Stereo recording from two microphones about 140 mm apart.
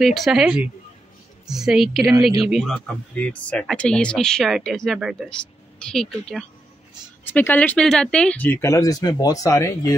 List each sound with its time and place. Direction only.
0.0 s speech: centre (ahead or behind); by 9.9 s 20° left (ahead or behind)